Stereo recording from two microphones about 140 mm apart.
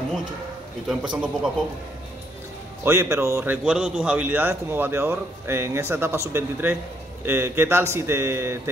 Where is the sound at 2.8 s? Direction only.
20° right (ahead or behind).